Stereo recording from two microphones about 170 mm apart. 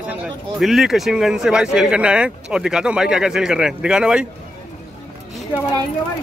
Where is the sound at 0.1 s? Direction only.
5° right (ahead or behind).